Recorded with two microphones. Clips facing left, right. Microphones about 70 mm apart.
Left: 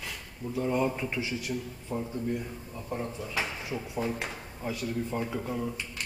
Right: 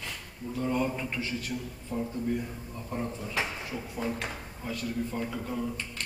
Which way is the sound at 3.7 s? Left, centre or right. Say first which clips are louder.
Left 3 dB; centre.